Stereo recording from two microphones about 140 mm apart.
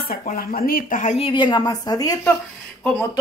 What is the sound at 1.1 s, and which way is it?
A woman's voice, 40° left (ahead or behind).